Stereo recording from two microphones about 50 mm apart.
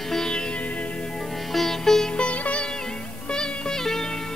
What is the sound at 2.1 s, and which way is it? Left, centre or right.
Music, left.